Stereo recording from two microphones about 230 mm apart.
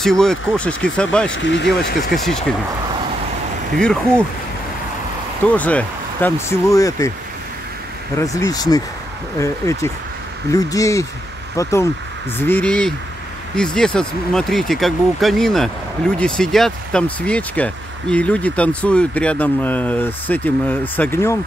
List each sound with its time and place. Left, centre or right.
0.0 s speech: centre
1.3 s speech: left
2.0 s speech: centre
3.7 s speech: centre
5.5 s speech: centre
8.2 s speech: centre